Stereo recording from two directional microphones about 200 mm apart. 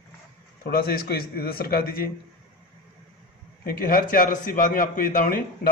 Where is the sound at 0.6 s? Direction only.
50° left (ahead or behind).